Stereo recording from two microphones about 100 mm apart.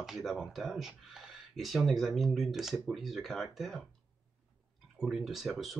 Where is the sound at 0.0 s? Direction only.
Centre (ahead or behind).